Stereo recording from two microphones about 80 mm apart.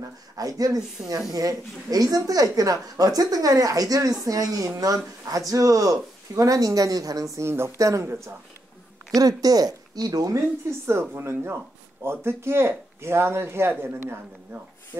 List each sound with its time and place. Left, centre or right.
0.4 s speech: right
9.2 s speech: right
10.9 s speech: right